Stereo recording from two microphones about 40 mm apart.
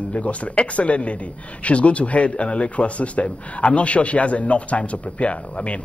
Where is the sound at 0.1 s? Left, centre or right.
Left.